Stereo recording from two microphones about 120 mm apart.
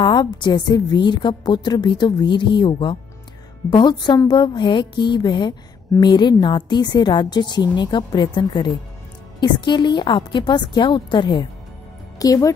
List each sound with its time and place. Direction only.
0.0 s a woman's voice: 40° left (ahead or behind)
12.2 s speech: 30° left (ahead or behind)